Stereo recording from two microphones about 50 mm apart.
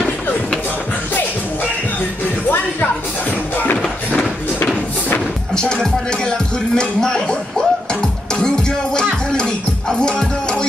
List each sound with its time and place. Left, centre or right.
5.5 s music: centre